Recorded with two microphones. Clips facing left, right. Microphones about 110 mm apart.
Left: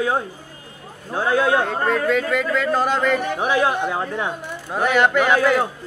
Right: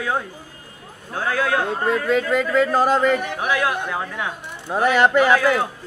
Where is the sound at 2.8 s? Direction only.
40° right (ahead or behind).